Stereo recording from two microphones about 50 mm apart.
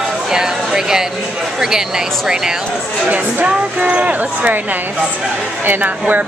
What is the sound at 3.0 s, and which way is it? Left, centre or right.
A woman's voice, right.